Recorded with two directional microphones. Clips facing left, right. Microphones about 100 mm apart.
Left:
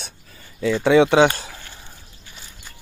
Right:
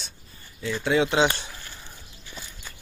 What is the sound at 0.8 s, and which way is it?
Speech, 85° left.